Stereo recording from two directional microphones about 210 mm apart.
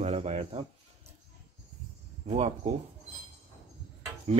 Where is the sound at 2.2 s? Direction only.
30° right (ahead or behind).